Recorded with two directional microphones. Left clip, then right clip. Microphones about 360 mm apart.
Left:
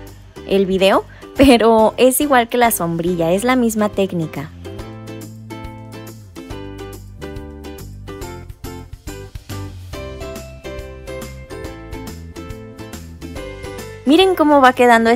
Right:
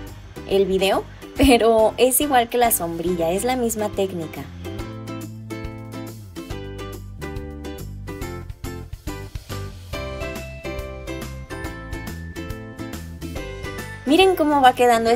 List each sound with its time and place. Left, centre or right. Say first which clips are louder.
0.5 s speech: left 5 dB; left
12.1 s music: even; centre
14.0 s speech: left 4 dB; centre